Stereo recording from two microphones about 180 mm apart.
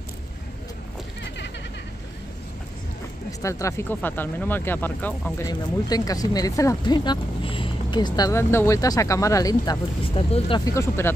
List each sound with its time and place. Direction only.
3.3 s speech: 15° left (ahead or behind)
5.5 s speech: 20° left (ahead or behind)
10.1 s speech: 30° left (ahead or behind)
10.6 s speech: 15° left (ahead or behind)